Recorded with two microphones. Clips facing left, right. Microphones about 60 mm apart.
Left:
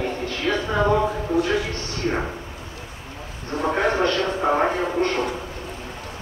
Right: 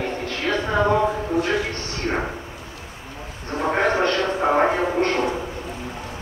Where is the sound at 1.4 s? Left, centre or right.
Centre.